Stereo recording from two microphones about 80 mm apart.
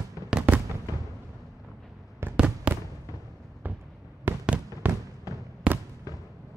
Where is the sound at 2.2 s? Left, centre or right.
Right.